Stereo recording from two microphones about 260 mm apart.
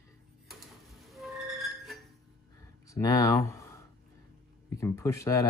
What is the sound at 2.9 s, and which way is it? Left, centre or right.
Speech, centre.